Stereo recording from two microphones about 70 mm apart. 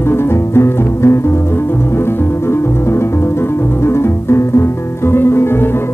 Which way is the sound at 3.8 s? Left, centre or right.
Left.